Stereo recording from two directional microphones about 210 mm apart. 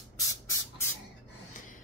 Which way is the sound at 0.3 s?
15° left (ahead or behind).